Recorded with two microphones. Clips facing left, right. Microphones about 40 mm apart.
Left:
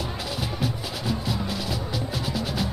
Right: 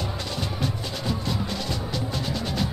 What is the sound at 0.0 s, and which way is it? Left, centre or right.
Music, centre.